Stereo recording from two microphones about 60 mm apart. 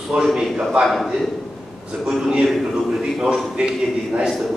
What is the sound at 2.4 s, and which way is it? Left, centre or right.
A man's voice, centre.